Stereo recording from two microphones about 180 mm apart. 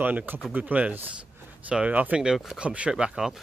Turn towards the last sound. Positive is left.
turn(degrees=-5)  # may be behind; listen again after turning